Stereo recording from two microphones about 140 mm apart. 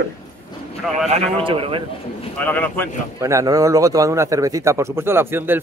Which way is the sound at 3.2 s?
25° right (ahead or behind).